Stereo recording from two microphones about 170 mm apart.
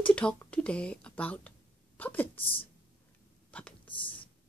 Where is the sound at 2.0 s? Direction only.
10° left (ahead or behind).